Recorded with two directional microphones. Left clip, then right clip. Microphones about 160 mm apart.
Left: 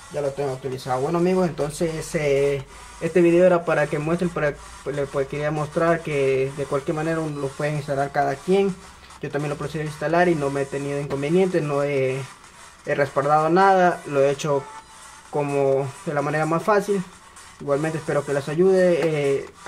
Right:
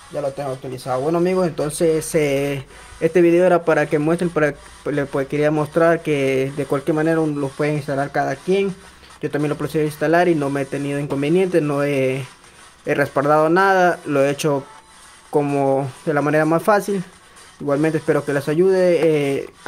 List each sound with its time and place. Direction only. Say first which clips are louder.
0.8 s speech: right 3 dB; 35° right (ahead or behind)